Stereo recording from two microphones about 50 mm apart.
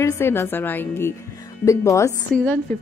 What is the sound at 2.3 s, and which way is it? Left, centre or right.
Speech, left.